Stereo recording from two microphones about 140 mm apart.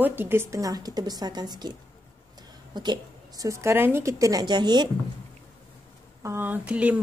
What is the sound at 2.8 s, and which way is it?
A woman's voice, 30° right (ahead or behind).